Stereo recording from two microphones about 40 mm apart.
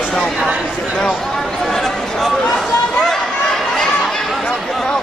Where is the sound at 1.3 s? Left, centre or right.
Centre.